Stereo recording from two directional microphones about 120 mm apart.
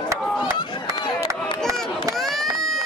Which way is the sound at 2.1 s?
Centre (ahead or behind).